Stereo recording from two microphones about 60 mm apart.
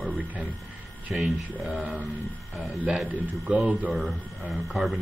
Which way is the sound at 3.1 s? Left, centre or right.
Right.